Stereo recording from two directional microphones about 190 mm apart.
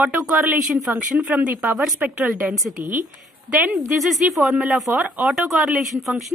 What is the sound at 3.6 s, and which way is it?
A woman's voice, 5° right (ahead or behind).